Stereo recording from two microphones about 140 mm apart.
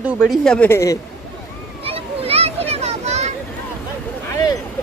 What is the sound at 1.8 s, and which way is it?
Children playing, 45° right (ahead or behind).